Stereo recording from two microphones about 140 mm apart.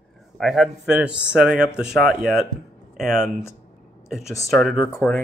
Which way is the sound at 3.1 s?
20° left (ahead or behind).